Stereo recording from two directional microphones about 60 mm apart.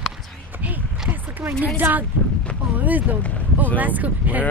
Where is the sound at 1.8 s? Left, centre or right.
Right.